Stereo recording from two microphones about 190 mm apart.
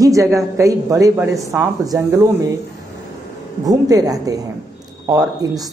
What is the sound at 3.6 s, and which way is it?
A woman's voice, 20° right (ahead or behind).